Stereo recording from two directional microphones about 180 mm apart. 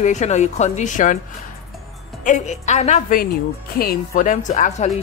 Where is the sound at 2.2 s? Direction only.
40° left (ahead or behind).